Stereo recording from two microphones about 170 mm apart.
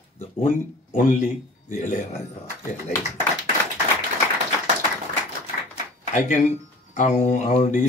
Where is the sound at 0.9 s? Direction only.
45° left (ahead or behind).